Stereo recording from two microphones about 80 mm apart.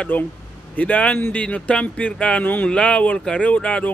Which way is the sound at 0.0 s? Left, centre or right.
Left.